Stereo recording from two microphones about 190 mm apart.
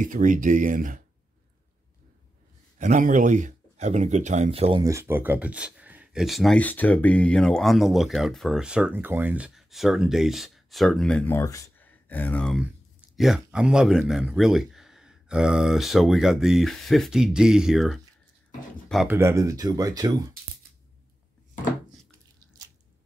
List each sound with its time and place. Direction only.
0.0 s speech: 45° right (ahead or behind)
2.8 s speech: 40° right (ahead or behind)
4.8 s speech: 15° right (ahead or behind)
19.0 s speech: 15° right (ahead or behind)